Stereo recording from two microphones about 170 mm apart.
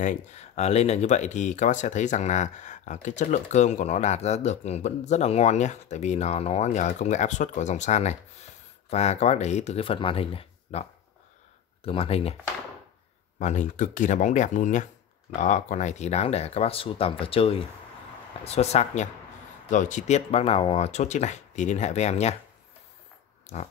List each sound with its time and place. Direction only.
0.0 s speech: 45° left (ahead or behind)
13.4 s speech: 45° left (ahead or behind)
23.5 s speech: 40° left (ahead or behind)